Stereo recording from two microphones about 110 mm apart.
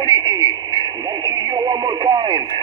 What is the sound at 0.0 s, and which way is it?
Radio, 35° right (ahead or behind).